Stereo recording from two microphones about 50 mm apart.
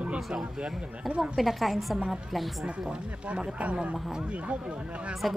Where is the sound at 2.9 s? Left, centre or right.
Centre.